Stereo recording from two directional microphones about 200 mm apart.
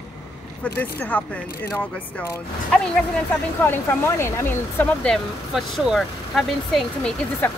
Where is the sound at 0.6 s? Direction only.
10° left (ahead or behind).